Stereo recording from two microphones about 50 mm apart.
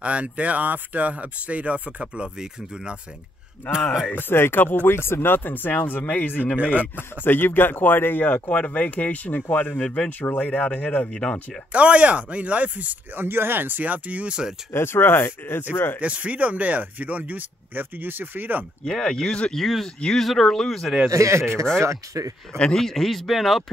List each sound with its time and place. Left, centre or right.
0.0 s speech: right
4.2 s a man's voice: left
6.6 s speech: right
7.0 s a man's voice: left
11.1 s speech: left
11.7 s speech: right
14.7 s speech: left
16.0 s speech: right
18.9 s speech: centre
21.1 s speech: right
22.6 s speech: centre